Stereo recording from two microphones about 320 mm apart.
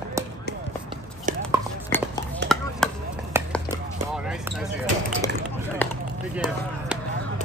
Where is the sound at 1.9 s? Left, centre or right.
Centre.